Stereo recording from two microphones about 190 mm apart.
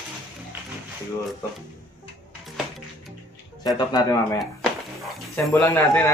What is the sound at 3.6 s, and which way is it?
Speech, 20° left (ahead or behind).